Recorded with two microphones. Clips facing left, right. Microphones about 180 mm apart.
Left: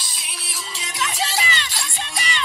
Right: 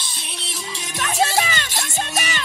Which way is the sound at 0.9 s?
50° right (ahead or behind).